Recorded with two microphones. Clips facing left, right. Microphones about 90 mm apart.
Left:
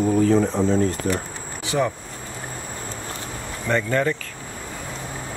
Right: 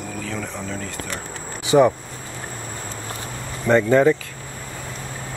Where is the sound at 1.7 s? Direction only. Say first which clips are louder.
Right 8 dB; 20° right (ahead or behind).